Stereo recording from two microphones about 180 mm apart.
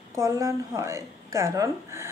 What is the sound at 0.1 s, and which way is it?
A woman's voice, 15° right (ahead or behind).